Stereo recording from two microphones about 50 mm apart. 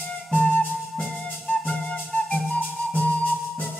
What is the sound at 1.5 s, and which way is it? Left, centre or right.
Flute, left.